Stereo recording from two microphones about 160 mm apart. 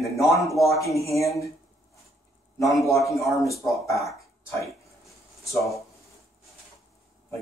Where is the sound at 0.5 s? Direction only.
20° left (ahead or behind).